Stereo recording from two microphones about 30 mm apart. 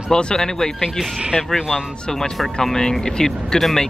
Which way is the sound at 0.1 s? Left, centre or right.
Left.